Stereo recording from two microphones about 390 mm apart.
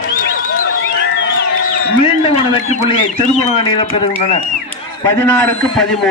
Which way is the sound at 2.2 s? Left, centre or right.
Centre.